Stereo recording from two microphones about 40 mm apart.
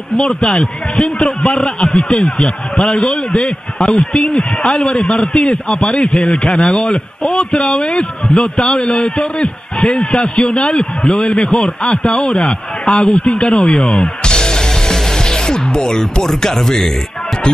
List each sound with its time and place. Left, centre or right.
0.2 s a man's voice: centre
14.2 s music: centre